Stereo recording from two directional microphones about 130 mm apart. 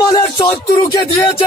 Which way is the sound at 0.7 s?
40° left (ahead or behind).